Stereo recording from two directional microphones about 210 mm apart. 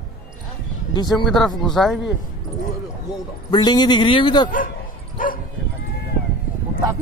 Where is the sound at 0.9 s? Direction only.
20° left (ahead or behind).